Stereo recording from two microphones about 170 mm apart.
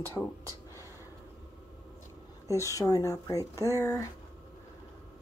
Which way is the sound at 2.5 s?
20° left (ahead or behind).